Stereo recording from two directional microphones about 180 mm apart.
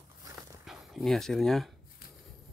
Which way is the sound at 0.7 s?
Centre (ahead or behind).